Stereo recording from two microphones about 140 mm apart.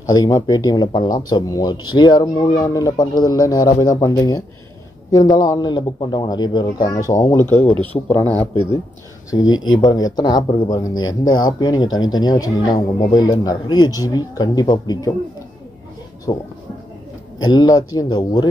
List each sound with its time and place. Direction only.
0.0 s speech: 25° left (ahead or behind)
7.7 s speech: 10° left (ahead or behind)
9.3 s speech: 30° left (ahead or behind)
16.3 s speech: 35° left (ahead or behind)